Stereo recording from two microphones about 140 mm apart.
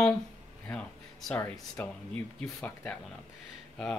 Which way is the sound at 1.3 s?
15° left (ahead or behind).